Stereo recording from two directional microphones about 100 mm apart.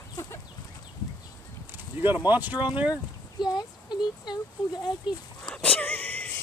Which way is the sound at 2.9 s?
45° left (ahead or behind).